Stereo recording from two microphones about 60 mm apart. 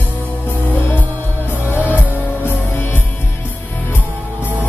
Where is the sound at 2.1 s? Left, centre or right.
Left.